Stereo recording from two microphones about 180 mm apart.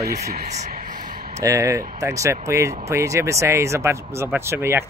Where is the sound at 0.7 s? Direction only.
50° right (ahead or behind).